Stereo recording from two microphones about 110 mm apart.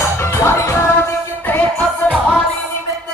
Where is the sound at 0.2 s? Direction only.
25° left (ahead or behind).